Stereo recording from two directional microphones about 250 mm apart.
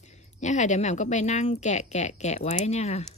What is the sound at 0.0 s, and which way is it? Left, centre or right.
A woman's voice, left.